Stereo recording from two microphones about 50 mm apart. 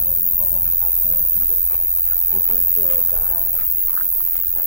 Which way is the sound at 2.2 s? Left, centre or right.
Centre.